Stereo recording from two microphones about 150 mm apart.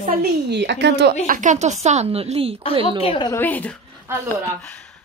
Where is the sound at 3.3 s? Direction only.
15° left (ahead or behind).